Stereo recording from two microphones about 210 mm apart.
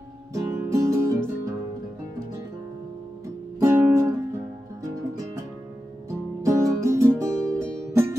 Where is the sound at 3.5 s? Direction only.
10° right (ahead or behind).